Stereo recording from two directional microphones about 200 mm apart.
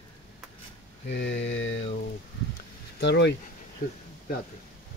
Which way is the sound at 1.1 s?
65° left (ahead or behind).